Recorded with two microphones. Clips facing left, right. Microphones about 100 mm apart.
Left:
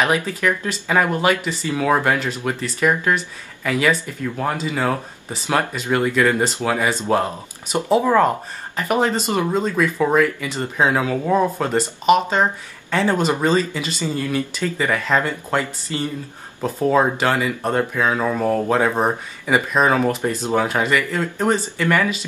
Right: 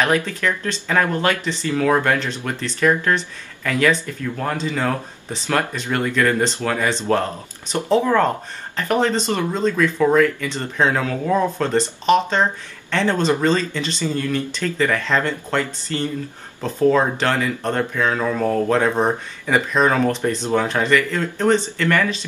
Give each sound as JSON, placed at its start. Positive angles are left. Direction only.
{"t": 0.0, "sound": "speech", "side_deg": 10}